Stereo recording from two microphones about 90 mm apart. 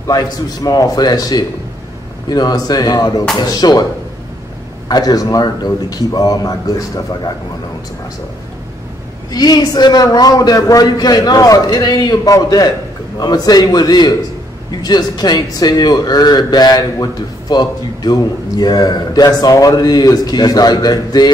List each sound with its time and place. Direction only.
0.0 s a man's voice: 50° left (ahead or behind)
4.8 s a man's voice: 45° left (ahead or behind)
9.3 s a man's voice: 50° left (ahead or behind)